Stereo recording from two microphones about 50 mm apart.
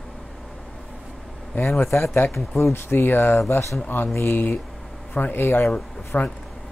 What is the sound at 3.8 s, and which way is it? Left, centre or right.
Speech, left.